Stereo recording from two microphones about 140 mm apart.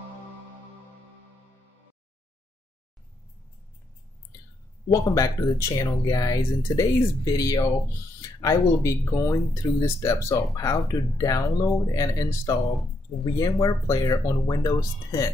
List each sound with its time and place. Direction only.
5.1 s speech: 25° left (ahead or behind)